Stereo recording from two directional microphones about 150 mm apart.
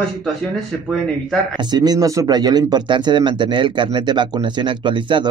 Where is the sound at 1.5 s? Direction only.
30° right (ahead or behind).